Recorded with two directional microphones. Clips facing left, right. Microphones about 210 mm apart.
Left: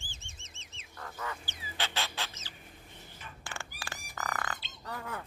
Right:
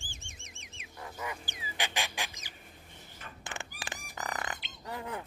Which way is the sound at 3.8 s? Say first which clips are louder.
Left 1 dB; 20° right (ahead or behind).